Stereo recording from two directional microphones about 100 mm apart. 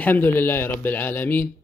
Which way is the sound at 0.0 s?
20° left (ahead or behind).